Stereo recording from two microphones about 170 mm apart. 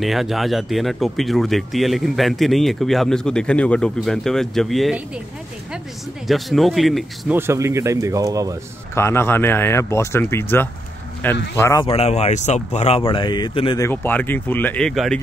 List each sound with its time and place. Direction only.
0.0 s speech: centre (ahead or behind)
6.2 s speech: centre (ahead or behind)
7.3 s speech: 15° right (ahead or behind)
8.9 s speech: 15° left (ahead or behind)
11.5 s speech: 15° left (ahead or behind)
11.8 s speech: 35° left (ahead or behind)
13.8 s speech: 10° left (ahead or behind)